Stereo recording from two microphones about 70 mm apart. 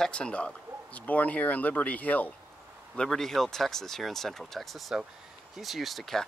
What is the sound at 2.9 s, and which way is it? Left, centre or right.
Speech, centre.